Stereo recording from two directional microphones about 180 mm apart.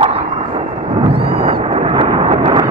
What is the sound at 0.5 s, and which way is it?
Thunder, 30° right (ahead or behind).